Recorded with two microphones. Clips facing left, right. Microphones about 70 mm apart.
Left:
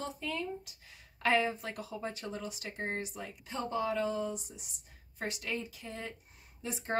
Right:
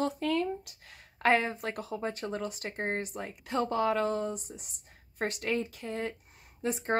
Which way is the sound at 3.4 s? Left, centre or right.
Right.